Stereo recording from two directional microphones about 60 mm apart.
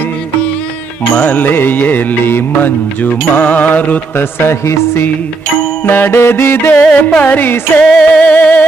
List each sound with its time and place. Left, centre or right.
1.2 s music: left
4.2 s music: left
6.8 s music: centre
7.2 s music: left
7.8 s music: centre
8.1 s music: left